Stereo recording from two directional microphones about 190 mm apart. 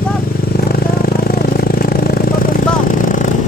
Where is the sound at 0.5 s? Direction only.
50° left (ahead or behind).